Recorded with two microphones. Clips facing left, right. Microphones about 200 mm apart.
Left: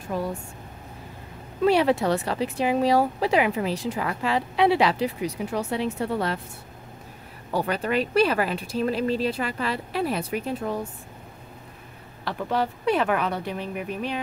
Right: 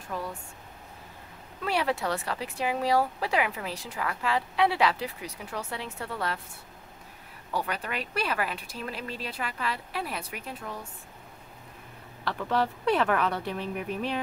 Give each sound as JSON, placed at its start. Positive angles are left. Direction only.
{"t": 1.6, "sound": "speech", "side_deg": 25}
{"t": 7.5, "sound": "speech", "side_deg": 30}
{"t": 12.3, "sound": "speech", "side_deg": 10}